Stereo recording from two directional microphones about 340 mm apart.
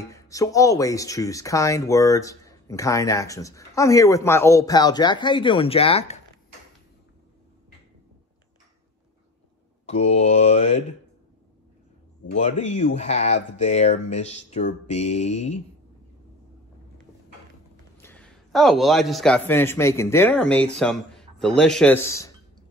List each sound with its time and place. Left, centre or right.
0.1 s speech: centre
9.8 s speech: centre
12.4 s speech: centre
18.0 s a man's voice: centre